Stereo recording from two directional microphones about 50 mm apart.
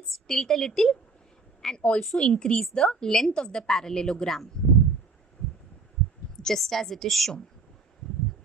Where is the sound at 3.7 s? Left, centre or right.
Centre.